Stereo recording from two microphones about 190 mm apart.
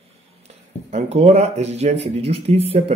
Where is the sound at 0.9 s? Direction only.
35° right (ahead or behind).